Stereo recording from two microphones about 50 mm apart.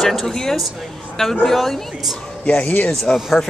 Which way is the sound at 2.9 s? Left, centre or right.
Centre.